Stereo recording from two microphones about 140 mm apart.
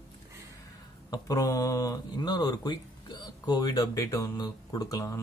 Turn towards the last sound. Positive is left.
turn(degrees=25)  # may be behind; listen again after turning